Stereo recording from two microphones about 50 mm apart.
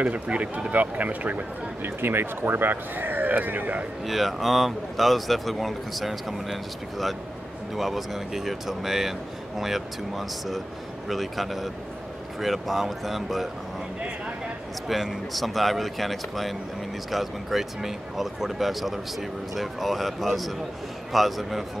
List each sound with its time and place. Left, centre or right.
0.0 s speech: right
1.8 s speech: right
4.0 s speech: centre
14.9 s speech: centre